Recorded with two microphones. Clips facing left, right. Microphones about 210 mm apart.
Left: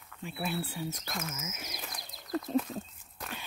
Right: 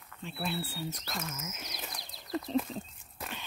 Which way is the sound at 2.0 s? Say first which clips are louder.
Left 1 dB; 45° left (ahead or behind).